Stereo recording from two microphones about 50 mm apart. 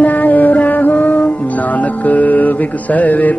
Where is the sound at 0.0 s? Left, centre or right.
Left.